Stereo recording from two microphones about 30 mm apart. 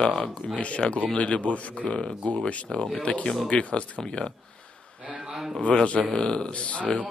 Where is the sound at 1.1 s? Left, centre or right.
Left.